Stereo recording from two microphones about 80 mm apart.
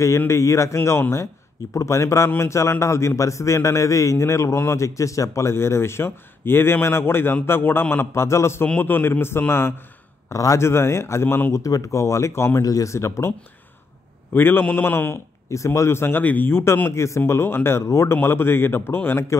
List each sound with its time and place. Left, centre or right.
0.3 s a man's voice: left
8.6 s a man's voice: left
10.3 s a man's voice: left
11.6 s a man's voice: left
12.6 s a man's voice: left
14.3 s a man's voice: left